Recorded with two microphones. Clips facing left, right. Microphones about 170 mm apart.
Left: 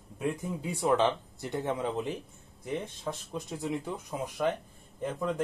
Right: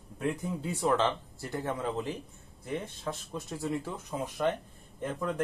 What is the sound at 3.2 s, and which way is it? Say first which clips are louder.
Speech: left 1 dB; centre (ahead or behind).